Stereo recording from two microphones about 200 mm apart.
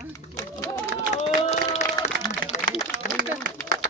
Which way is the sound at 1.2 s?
35° left (ahead or behind).